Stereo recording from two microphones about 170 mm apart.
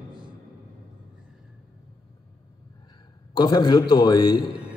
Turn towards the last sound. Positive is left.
turn(degrees=25)  # may be behind; listen again after turning